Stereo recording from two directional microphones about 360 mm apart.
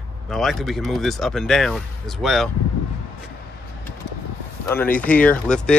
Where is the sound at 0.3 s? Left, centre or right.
Centre.